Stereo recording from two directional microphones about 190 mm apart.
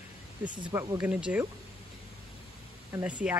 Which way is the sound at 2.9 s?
5° right (ahead or behind).